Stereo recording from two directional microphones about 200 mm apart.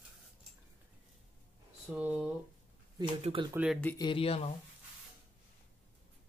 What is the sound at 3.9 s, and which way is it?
Speech, 25° left (ahead or behind).